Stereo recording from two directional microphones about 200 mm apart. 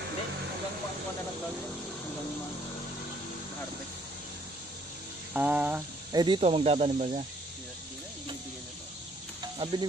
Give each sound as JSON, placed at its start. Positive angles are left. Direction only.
{"t": 5.3, "sound": "a sound", "side_deg": -10}
{"t": 6.1, "sound": "speech", "side_deg": -25}
{"t": 9.6, "sound": "frying", "side_deg": -20}